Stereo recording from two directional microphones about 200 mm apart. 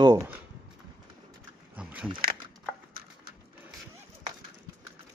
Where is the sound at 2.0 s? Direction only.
25° right (ahead or behind).